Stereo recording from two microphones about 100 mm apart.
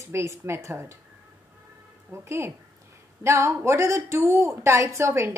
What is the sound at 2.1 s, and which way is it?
A woman's voice, 25° right (ahead or behind).